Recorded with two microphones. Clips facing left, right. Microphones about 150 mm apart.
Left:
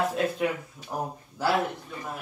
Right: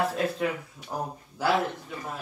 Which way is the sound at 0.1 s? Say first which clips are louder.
Left 1 dB; 5° left (ahead or behind).